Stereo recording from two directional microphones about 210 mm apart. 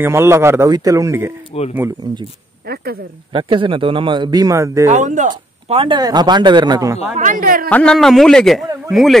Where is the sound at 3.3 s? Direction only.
25° right (ahead or behind).